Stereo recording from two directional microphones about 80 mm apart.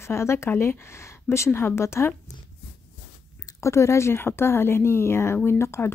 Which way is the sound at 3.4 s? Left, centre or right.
Left.